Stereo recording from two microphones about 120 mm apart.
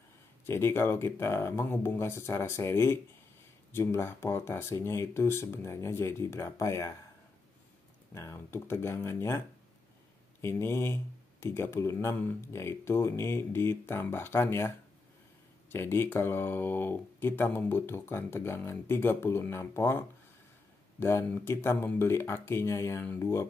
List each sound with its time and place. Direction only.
0.5 s speech: 20° left (ahead or behind)
8.1 s speech: 20° left (ahead or behind)
10.4 s speech: 20° left (ahead or behind)
15.7 s speech: 20° left (ahead or behind)